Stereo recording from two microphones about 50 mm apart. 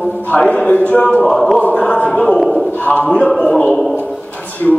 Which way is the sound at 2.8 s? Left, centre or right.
Left.